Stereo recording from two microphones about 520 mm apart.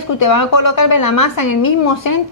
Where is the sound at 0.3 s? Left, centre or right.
Left.